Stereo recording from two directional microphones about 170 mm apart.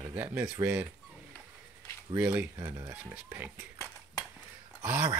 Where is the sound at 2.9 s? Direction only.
10° right (ahead or behind).